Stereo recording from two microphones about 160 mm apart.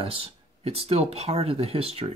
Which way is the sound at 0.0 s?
35° right (ahead or behind).